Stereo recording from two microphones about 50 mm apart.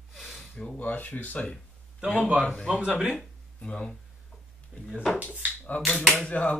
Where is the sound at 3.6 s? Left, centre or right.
Left.